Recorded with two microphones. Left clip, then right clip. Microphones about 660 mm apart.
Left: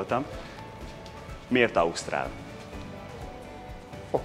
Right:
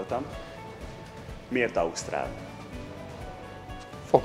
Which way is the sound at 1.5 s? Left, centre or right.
Left.